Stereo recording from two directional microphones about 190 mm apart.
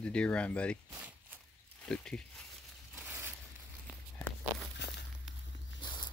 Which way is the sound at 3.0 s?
10° right (ahead or behind).